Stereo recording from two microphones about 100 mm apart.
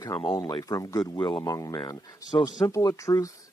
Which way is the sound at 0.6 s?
35° left (ahead or behind).